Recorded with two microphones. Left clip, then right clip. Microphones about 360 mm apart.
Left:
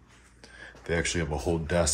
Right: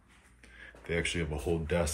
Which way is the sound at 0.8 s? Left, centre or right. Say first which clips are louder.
Left 4 dB; left.